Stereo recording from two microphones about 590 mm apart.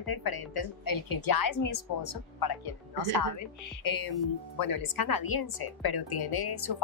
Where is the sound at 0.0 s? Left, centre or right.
Left.